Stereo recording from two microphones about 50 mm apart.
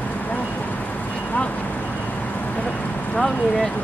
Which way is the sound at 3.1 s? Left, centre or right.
Centre.